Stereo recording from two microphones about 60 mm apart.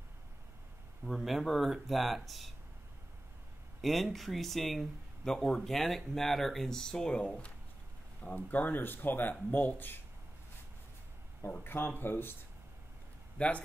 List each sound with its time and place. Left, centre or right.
1.0 s speech: centre
3.8 s speech: centre
8.2 s speech: left
11.6 s speech: left
13.4 s speech: left